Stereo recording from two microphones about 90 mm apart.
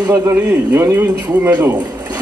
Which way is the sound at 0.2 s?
35° right (ahead or behind).